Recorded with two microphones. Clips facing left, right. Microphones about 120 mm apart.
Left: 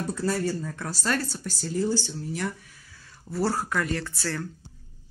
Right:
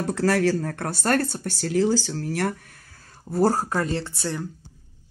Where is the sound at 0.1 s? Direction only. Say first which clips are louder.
Right 7 dB; 80° right; by 4.5 s 20° right (ahead or behind).